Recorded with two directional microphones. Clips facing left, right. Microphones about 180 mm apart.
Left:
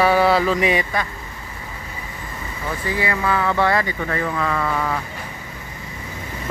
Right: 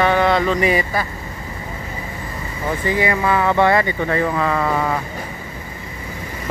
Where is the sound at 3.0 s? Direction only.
15° right (ahead or behind).